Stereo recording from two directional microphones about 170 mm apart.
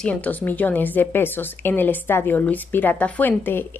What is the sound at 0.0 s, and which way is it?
A woman's voice, 10° left (ahead or behind).